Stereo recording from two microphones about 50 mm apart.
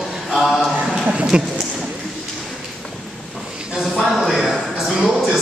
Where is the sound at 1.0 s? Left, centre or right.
Centre.